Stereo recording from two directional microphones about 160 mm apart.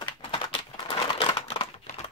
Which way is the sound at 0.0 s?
30° left (ahead or behind).